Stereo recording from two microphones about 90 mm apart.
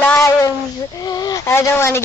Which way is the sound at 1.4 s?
30° left (ahead or behind).